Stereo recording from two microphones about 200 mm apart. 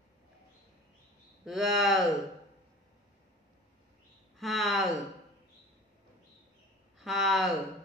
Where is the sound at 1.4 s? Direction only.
Centre (ahead or behind).